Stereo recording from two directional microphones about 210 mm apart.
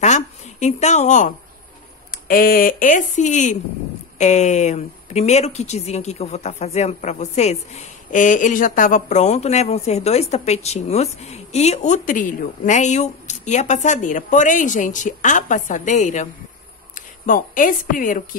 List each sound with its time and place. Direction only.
0.0 s speech: 35° left (ahead or behind)